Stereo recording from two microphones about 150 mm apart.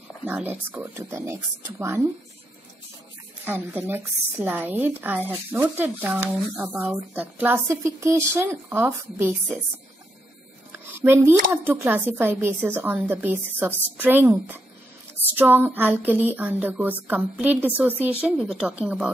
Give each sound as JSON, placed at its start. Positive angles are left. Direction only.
{"t": 0.2, "sound": "a woman's voice", "side_deg": -10}
{"t": 3.4, "sound": "a woman's voice", "side_deg": -15}
{"t": 10.9, "sound": "a woman's voice", "side_deg": -15}